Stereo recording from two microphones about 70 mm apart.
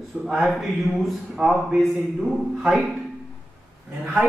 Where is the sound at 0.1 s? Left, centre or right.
Centre.